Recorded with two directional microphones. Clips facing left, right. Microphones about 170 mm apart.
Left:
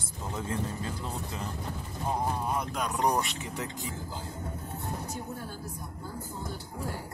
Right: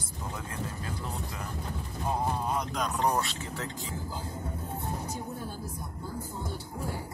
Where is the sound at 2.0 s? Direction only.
15° left (ahead or behind).